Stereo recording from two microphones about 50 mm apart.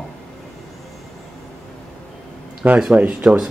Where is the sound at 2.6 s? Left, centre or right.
Right.